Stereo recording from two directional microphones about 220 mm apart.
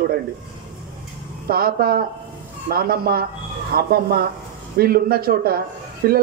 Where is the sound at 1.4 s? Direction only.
45° right (ahead or behind).